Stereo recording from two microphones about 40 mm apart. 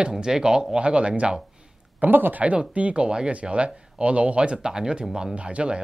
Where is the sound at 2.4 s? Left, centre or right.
Right.